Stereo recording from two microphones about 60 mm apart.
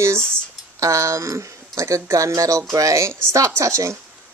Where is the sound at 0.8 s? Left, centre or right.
Right.